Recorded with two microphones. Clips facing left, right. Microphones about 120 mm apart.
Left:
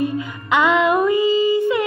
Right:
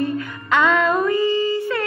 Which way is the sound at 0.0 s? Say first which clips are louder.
Left 1 dB; 15° left (ahead or behind).